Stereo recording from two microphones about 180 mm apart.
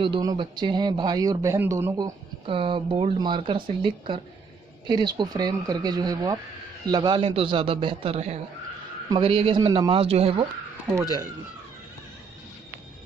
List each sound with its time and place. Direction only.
0.0 s a man's voice: 25° right (ahead or behind)
2.4 s a man's voice: 30° right (ahead or behind)